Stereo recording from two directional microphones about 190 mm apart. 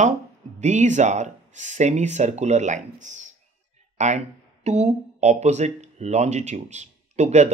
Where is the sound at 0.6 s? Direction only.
40° right (ahead or behind).